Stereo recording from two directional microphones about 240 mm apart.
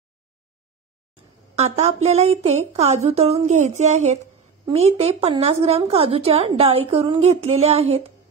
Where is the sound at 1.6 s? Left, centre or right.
Right.